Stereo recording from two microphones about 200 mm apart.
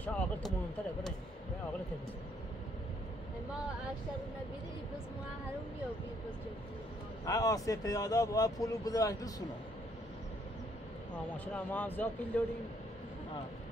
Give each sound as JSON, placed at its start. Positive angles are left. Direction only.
{"t": 0.0, "sound": "a sound", "side_deg": 0}
{"t": 7.2, "sound": "speech", "side_deg": 15}
{"t": 11.3, "sound": "speech", "side_deg": 10}